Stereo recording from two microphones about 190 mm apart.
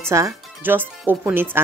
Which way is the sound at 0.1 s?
15° right (ahead or behind).